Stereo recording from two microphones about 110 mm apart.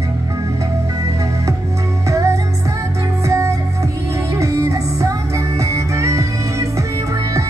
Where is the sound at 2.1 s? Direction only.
30° right (ahead or behind).